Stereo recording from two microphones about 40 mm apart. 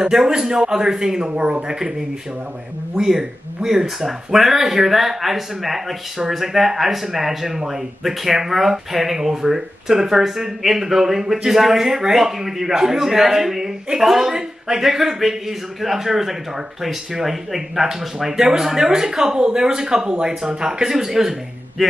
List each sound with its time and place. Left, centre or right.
0.0 s a man's voice: centre